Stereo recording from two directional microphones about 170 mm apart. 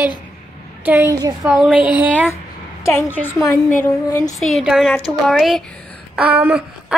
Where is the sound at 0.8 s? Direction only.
10° right (ahead or behind).